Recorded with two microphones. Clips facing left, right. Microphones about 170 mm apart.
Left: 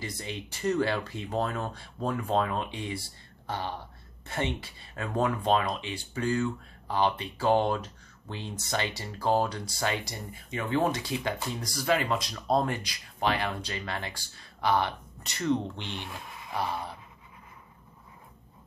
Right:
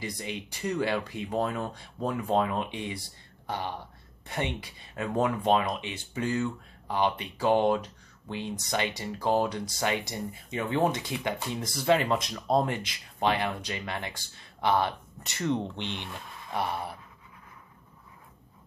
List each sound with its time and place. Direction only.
0.0 s speech: 15° right (ahead or behind)